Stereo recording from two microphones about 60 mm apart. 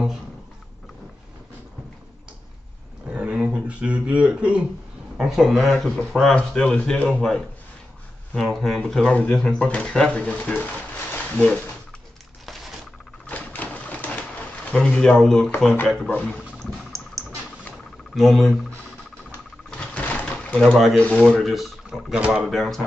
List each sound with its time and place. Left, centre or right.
3.1 s a sound: right
5.1 s speech: centre
9.0 s speech: left
13.3 s pigeon: left
14.7 s speech: centre
16.1 s speech: left
16.7 s a sound: centre
18.1 s speech: centre
19.7 s drawer open or close: centre
21.0 s speech: centre
21.4 s speech: centre
21.8 s speech: centre
22.4 s speech: centre